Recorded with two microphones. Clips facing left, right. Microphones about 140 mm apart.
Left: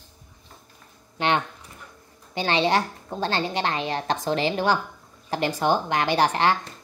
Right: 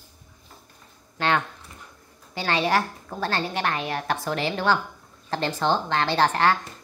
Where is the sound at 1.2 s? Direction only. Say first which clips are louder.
Even; 15° left (ahead or behind).